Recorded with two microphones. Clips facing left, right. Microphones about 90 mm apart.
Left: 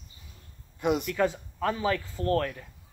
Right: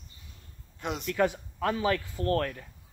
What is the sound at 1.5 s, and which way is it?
Speech, 25° left (ahead or behind).